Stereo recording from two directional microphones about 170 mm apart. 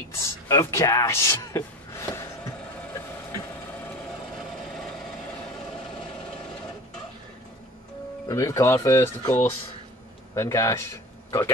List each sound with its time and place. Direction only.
0.1 s speech: 15° left (ahead or behind)
8.3 s speech: 20° left (ahead or behind)